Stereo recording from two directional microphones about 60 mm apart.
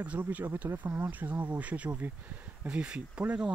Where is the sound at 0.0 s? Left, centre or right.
Right.